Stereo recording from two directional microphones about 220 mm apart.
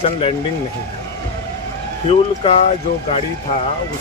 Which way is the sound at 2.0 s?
30° left (ahead or behind).